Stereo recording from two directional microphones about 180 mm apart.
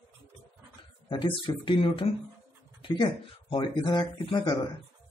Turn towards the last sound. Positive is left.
turn(degrees=25)  # may be behind; listen again after turning